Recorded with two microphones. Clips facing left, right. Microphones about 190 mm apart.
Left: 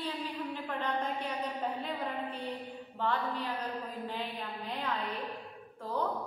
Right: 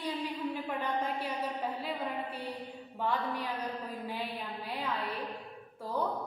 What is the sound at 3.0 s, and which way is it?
A woman's voice, 10° right (ahead or behind).